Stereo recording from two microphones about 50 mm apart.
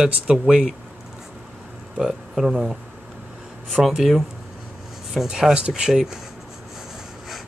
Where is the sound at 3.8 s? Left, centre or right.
Centre.